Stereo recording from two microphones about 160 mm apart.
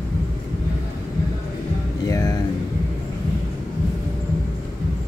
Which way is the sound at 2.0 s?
20° left (ahead or behind).